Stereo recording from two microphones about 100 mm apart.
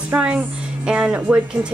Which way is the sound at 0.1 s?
15° right (ahead or behind).